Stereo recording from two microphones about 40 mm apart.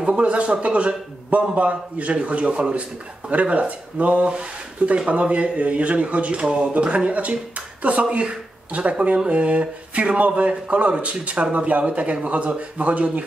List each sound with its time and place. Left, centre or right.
0.0 s speech: right